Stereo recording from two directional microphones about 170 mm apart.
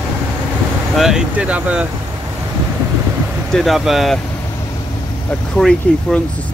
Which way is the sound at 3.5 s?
Centre (ahead or behind).